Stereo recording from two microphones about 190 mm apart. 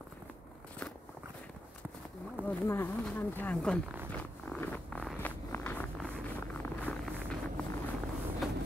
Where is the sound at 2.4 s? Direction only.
10° left (ahead or behind).